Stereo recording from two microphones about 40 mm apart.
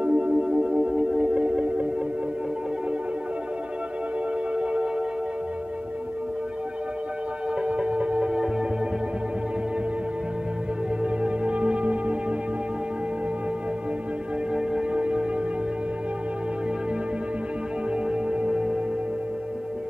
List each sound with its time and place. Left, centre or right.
0.0 s music: right
0.4 s music: right
7.6 s music: right
11.2 s music: right
14.5 s music: right
18.1 s music: right